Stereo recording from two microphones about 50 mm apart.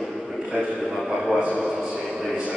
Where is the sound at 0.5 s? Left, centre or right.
Centre.